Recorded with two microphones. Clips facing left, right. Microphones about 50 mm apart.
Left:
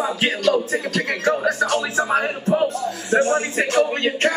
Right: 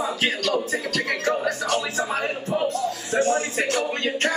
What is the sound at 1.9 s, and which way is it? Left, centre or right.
Speech, left.